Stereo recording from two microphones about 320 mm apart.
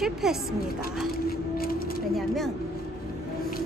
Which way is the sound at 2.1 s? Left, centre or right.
Centre.